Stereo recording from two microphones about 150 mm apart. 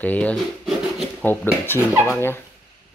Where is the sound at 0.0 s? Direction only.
10° left (ahead or behind).